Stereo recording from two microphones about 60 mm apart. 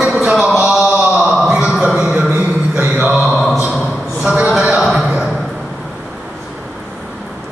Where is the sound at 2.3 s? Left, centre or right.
Right.